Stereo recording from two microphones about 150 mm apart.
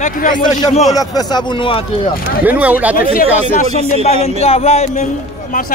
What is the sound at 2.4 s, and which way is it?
Speech, 10° right (ahead or behind).